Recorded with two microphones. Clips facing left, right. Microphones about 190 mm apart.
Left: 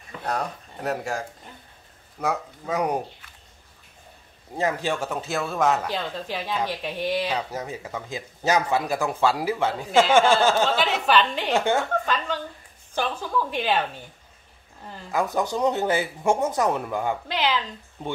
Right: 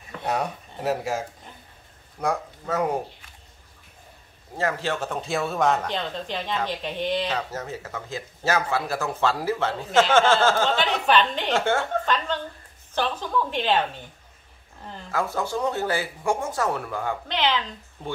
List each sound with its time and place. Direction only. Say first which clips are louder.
0.2 s speech: right 2 dB; 5° right (ahead or behind)
2.2 s speech: right 1 dB; 10° left (ahead or behind)
4.6 s speech: left 1 dB; 15° left (ahead or behind)
10.7 s a woman's voice: even; centre (ahead or behind)
11.5 s speech: left 1 dB; 15° left (ahead or behind)
15.0 s speech: left 2 dB; 15° left (ahead or behind)
17.3 s a woman's voice: right 2 dB; 5° left (ahead or behind)